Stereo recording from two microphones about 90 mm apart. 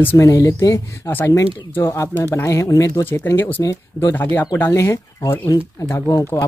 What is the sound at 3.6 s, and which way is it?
Speech, 40° left (ahead or behind).